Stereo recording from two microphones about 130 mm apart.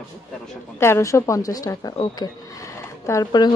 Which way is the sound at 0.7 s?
20° left (ahead or behind).